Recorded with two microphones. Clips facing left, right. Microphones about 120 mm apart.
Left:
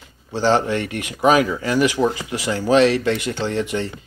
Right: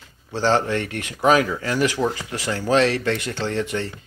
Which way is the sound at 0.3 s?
15° left (ahead or behind).